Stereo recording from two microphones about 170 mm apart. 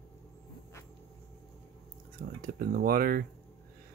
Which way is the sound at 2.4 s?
55° right (ahead or behind).